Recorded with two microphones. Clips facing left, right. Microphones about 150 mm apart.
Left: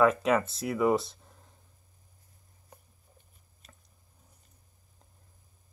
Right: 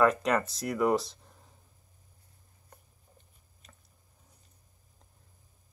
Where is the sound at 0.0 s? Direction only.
Centre (ahead or behind).